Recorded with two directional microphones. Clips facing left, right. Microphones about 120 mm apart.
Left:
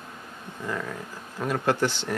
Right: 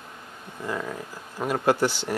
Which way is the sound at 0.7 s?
20° right (ahead or behind).